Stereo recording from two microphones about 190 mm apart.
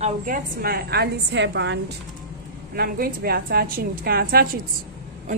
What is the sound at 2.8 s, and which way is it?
A woman's voice, 55° right (ahead or behind).